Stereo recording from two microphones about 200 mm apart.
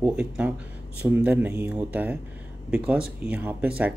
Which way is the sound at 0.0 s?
5° right (ahead or behind).